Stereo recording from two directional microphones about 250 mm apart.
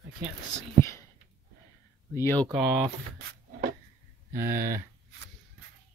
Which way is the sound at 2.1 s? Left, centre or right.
Centre.